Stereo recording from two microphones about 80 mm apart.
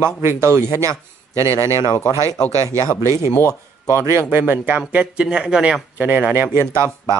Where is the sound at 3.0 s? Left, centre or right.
Right.